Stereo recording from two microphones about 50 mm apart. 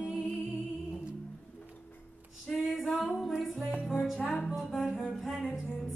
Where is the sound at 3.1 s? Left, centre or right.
Centre.